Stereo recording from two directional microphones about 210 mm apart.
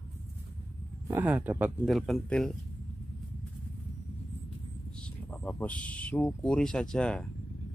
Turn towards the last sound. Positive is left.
turn(degrees=5)  # may be behind; listen again after turning